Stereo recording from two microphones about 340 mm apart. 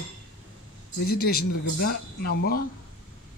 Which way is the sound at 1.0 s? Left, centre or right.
Left.